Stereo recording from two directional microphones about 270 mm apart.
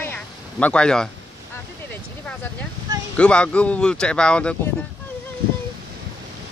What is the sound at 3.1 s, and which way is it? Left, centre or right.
Speech, centre.